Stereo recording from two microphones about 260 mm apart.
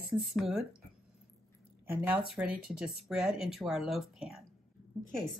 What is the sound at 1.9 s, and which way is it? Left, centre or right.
Speech, centre.